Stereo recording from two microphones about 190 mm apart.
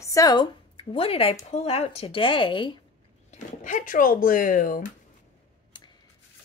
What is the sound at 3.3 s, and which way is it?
Speech, 40° left (ahead or behind).